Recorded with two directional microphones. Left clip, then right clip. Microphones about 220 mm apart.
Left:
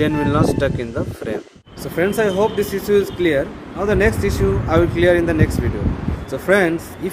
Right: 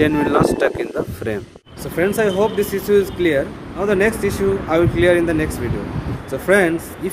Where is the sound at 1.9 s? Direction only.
5° left (ahead or behind).